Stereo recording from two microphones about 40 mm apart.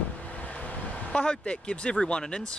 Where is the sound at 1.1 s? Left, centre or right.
Left.